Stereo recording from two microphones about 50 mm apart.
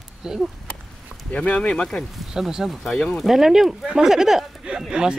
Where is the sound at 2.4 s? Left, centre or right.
Centre.